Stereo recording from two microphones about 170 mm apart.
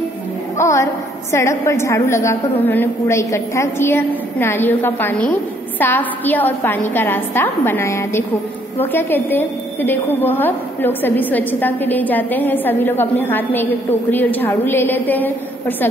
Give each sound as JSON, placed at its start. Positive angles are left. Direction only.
{"t": 0.6, "sound": "a woman's voice", "side_deg": 15}